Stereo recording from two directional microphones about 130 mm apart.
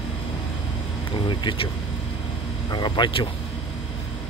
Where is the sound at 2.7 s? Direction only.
35° left (ahead or behind).